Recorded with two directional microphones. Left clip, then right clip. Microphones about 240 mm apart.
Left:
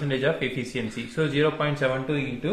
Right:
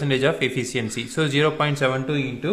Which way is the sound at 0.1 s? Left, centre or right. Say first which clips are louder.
Right 4 dB; right.